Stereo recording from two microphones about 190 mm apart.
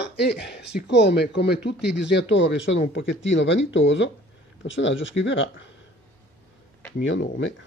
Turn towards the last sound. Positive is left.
turn(degrees=80)